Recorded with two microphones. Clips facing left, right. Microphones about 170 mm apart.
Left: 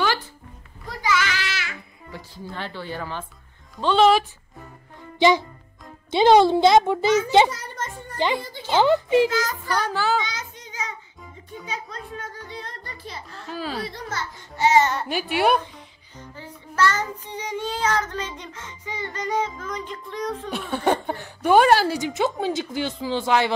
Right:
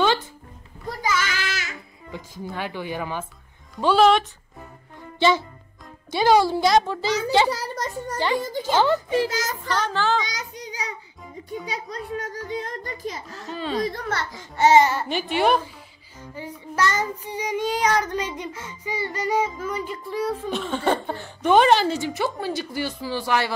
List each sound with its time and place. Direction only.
1.0 s child singing: 45° right (ahead or behind)
2.4 s child singing: 15° right (ahead or behind)
3.8 s a woman's voice: centre (ahead or behind)
6.1 s a child's voice: 20° left (ahead or behind)
7.4 s a sound: 35° right (ahead or behind)
8.4 s speech: 45° right (ahead or behind)
8.7 s a woman's voice: 20° left (ahead or behind)
10.2 s child singing: 35° right (ahead or behind)
11.6 s speech: 35° right (ahead or behind)
13.5 s a woman's voice: 5° left (ahead or behind)
13.8 s a child's voice: 55° right (ahead or behind)
14.8 s a woman's voice: 5° right (ahead or behind)
16.3 s child singing: 10° right (ahead or behind)
20.5 s a woman's voice: 10° left (ahead or behind)